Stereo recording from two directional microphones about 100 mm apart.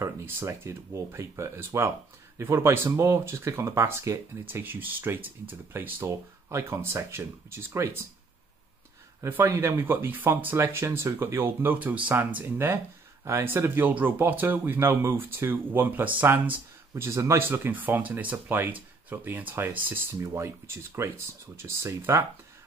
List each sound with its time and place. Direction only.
0.0 s speech: 25° right (ahead or behind)
9.2 s speech: 25° right (ahead or behind)
16.9 s speech: 30° right (ahead or behind)